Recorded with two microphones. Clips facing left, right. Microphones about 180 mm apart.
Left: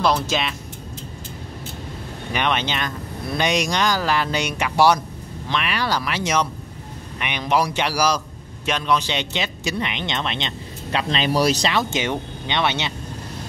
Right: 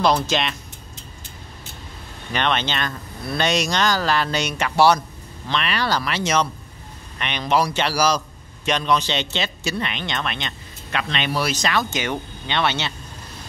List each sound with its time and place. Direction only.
0.0 s speech: 5° left (ahead or behind)
2.3 s speech: 10° left (ahead or behind)